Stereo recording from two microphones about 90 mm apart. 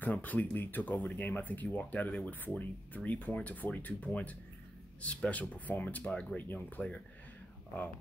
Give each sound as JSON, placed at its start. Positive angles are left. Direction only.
{"t": 0.0, "sound": "speech", "side_deg": 20}